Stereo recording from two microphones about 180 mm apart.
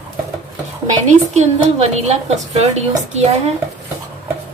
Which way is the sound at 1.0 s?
40° right (ahead or behind).